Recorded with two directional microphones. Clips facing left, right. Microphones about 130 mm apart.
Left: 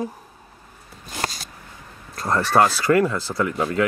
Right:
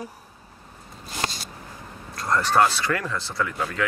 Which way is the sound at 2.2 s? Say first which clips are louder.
Left 2 dB; 30° left (ahead or behind).